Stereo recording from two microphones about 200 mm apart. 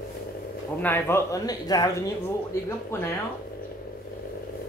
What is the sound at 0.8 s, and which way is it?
Speech, 10° left (ahead or behind).